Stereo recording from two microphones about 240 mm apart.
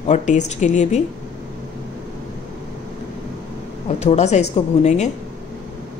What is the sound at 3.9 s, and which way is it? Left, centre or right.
Speech, left.